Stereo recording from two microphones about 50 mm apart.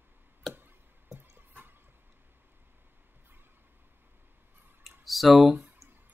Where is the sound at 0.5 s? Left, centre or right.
Right.